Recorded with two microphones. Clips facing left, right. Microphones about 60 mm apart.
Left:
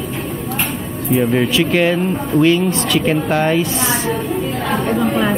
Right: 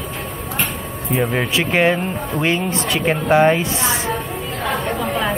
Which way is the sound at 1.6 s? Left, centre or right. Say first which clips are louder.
Right 2 dB; right.